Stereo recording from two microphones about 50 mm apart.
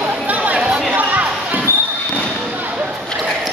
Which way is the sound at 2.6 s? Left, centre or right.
Right.